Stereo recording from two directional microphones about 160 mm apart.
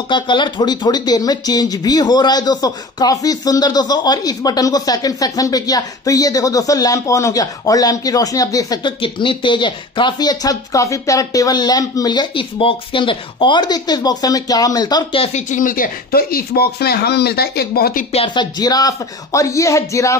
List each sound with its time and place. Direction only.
0.1 s speech: 30° left (ahead or behind)
15.2 s speech: 50° left (ahead or behind); by 18.0 s 75° left (ahead or behind)
18.1 s speech: 30° left (ahead or behind)